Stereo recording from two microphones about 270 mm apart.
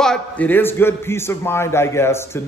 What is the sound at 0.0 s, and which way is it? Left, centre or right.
Speech, centre.